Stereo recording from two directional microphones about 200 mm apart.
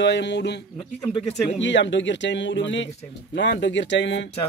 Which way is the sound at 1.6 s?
65° left (ahead or behind).